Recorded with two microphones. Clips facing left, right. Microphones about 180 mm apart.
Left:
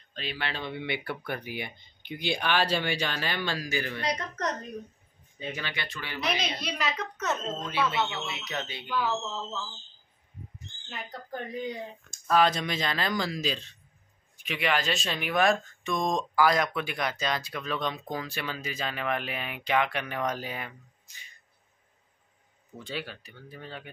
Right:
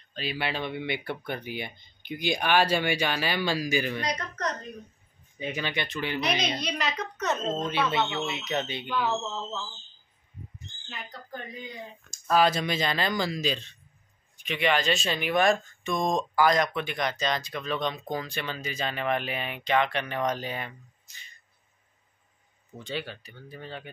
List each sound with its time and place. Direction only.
0.1 s a man's voice: 5° right (ahead or behind); by 1.7 s 25° right (ahead or behind)
2.0 s a man's voice: 10° right (ahead or behind)
5.4 s speech: 15° right (ahead or behind)
6.3 s a woman's voice: 5° left (ahead or behind)
7.5 s speech: 25° right (ahead or behind)
12.1 s speech: centre (ahead or behind)
22.8 s speech: 5° left (ahead or behind)